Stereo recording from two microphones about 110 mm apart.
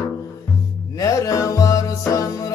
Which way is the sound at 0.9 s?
30° left (ahead or behind).